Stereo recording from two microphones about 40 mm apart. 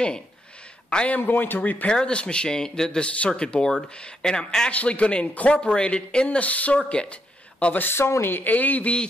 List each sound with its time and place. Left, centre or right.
0.8 s a man's voice: left
1.2 s speech: left
1.9 s speech: left
4.6 s speech: left
5.3 s speech: left
5.6 s speech: left
6.9 s a sound: left
7.9 s speech: left
8.5 s speech: left